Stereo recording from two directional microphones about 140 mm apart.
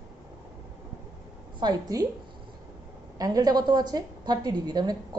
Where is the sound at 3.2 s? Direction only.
25° right (ahead or behind).